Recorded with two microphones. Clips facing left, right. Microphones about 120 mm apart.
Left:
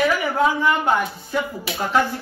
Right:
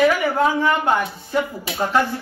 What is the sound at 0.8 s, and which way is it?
Speech, 25° right (ahead or behind).